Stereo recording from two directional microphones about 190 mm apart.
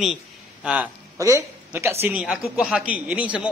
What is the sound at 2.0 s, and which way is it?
A man's voice, 5° right (ahead or behind).